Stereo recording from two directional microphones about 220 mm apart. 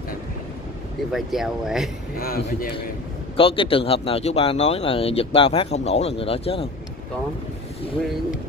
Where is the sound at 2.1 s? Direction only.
40° left (ahead or behind).